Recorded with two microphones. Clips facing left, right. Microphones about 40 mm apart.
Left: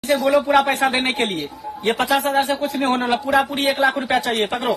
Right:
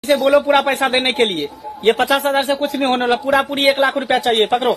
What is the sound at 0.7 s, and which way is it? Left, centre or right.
A man's voice, right.